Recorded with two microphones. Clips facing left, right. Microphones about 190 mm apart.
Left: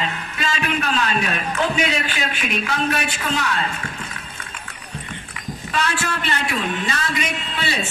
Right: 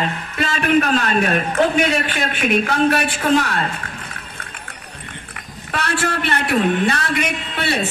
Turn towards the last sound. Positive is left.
turn(degrees=-60)  # may be behind; listen again after turning